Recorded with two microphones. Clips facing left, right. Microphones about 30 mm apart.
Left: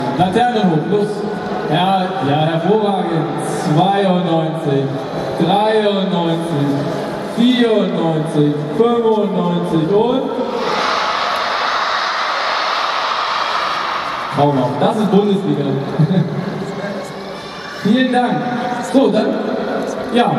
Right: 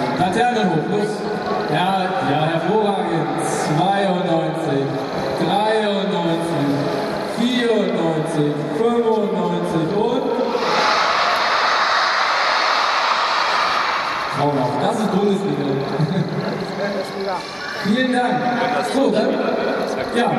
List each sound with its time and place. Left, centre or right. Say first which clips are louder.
0.2 s a man's voice: left 4 dB; left
1.7 s a man's voice: left 5 dB; left
2.0 s a man's voice: left 3 dB; centre
3.7 s a man's voice: left 5 dB; centre
5.8 s a man's voice: left 4 dB; left
7.3 s a man's voice: left 6 dB; left
8.9 s a man's voice: left 3 dB; centre
9.8 s a man's voice: left 6 dB; left
10.7 s crowd: right 1 dB; centre
11.6 s vehicle: even; centre
18.9 s a man's voice: left 6 dB; left